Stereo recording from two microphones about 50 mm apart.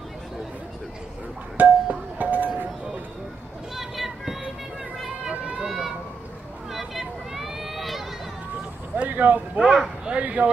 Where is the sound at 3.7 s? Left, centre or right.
Centre.